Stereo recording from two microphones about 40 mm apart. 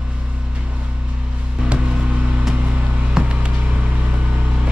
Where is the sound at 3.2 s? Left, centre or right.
Right.